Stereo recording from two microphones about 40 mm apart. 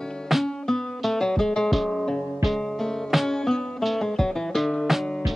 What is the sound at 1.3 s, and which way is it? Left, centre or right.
Music, centre.